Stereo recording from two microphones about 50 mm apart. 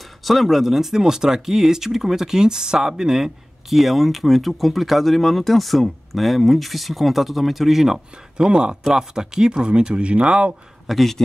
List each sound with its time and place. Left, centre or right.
0.2 s speech: centre; by 10.3 s right
10.9 s speech: centre